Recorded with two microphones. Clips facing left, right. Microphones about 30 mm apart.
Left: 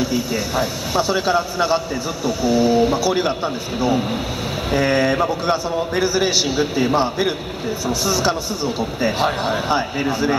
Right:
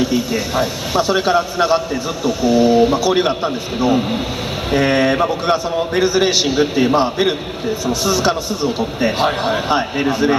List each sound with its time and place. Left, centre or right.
0.0 s a man's voice: centre